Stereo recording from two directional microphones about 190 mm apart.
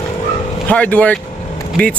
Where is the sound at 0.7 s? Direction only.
10° left (ahead or behind).